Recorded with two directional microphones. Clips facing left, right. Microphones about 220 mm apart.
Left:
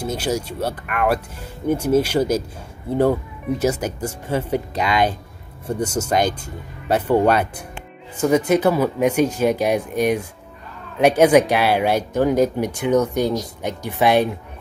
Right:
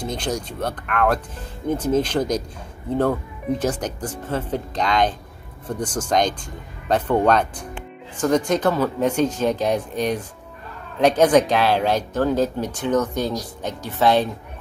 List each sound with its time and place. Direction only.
0.0 s speech: 5° left (ahead or behind)